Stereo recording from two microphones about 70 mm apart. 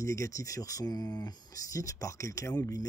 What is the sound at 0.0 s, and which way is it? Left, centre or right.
Speech, left.